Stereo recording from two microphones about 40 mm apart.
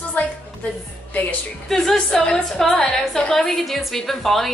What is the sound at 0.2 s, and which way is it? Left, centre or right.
Music, left.